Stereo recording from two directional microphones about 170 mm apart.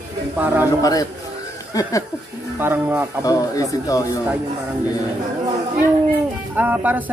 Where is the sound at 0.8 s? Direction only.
20° left (ahead or behind).